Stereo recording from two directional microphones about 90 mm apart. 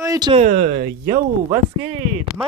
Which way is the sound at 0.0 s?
40° right (ahead or behind).